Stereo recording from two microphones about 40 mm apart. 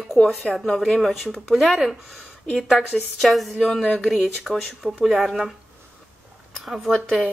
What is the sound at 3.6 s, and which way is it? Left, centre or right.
Speech, centre.